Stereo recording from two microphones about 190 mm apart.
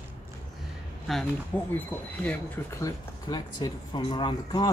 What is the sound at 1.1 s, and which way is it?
Speech, centre (ahead or behind).